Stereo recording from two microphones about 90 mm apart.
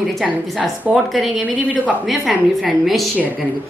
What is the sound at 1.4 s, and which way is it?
Speech, 15° right (ahead or behind).